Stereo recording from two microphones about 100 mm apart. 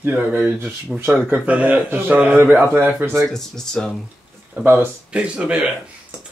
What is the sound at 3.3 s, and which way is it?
Speech, 5° left (ahead or behind).